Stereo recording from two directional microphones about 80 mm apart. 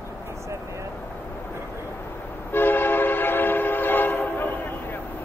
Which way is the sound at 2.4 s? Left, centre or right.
Left.